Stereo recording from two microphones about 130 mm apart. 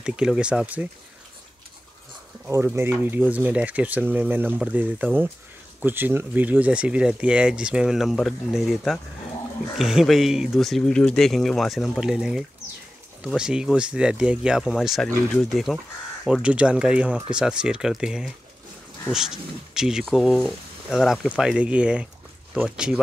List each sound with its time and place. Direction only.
0.0 s speech: 5° right (ahead or behind)
2.4 s speech: 20° right (ahead or behind)